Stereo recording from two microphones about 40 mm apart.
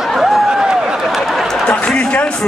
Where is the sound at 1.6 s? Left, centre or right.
Left.